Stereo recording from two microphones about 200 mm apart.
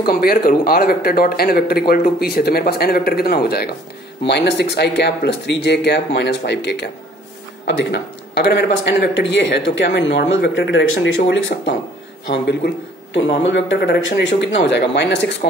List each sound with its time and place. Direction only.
0.0 s a man's voice: 50° left (ahead or behind)